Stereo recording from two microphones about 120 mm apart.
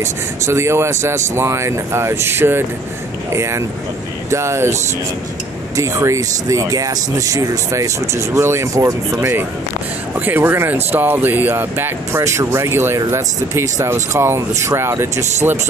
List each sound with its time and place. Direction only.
0.0 s speech: 20° right (ahead or behind)
5.8 s speech: 25° right (ahead or behind)